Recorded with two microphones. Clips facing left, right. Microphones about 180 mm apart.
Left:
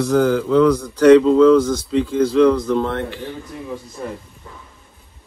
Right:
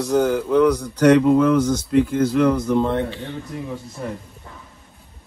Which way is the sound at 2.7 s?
15° right (ahead or behind).